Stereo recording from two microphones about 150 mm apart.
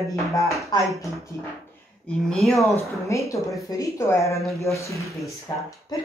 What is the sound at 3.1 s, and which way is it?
Speech, 20° left (ahead or behind).